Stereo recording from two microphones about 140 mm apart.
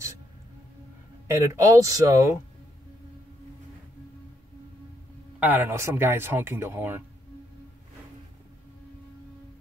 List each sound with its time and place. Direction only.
1.2 s speech: 20° right (ahead or behind)
5.4 s speech: 15° right (ahead or behind)